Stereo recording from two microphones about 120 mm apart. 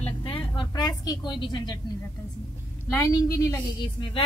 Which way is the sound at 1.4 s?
35° left (ahead or behind).